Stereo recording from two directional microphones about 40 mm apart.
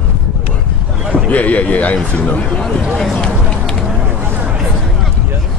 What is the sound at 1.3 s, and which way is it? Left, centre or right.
Speech, left.